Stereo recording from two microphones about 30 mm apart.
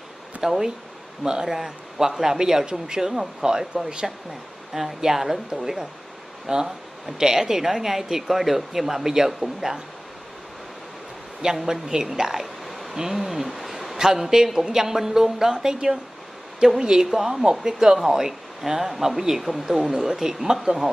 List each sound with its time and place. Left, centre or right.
0.4 s speech: centre
3.1 s speech: centre
7.4 s speech: centre
11.6 s a woman's voice: centre
20.7 s speech: right